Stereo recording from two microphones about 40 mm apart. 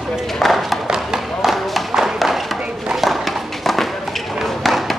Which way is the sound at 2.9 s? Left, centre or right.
Centre.